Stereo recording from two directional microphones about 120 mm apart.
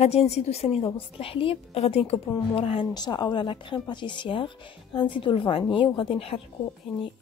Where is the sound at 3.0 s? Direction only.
40° left (ahead or behind).